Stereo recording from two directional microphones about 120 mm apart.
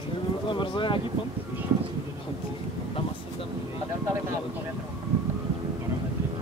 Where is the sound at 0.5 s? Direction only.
45° left (ahead or behind).